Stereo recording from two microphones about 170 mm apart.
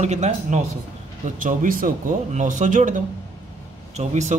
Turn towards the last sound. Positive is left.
turn(degrees=-45)  # may be behind; listen again after turning